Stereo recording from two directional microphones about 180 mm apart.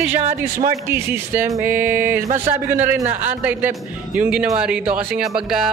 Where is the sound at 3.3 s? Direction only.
10° right (ahead or behind).